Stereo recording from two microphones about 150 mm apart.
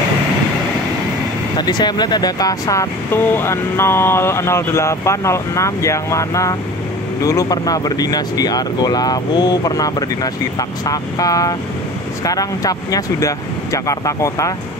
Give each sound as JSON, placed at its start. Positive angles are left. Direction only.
{"t": 1.6, "sound": "speech", "side_deg": 30}